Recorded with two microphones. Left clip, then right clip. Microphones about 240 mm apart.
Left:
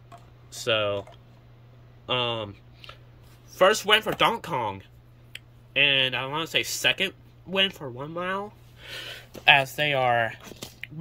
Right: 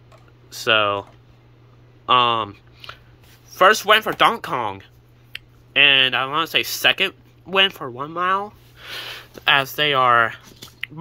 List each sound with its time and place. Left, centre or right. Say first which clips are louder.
0.5 s speech: right 7 dB; centre
2.0 s a sound: right 11 dB; centre
3.5 s speech: right 6 dB; centre